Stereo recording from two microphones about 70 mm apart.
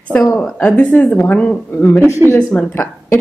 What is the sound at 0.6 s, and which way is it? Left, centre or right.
Speech, left.